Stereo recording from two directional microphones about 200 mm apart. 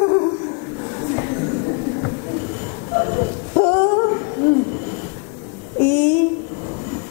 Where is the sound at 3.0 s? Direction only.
30° left (ahead or behind).